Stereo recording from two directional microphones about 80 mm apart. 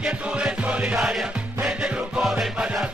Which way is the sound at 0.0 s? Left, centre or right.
Centre.